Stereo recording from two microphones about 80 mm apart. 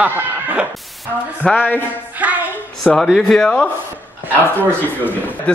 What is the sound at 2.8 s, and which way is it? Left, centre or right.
Speech, centre.